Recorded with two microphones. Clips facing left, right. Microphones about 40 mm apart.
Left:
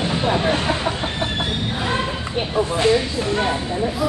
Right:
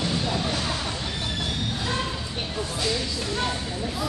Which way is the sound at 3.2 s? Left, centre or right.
Left.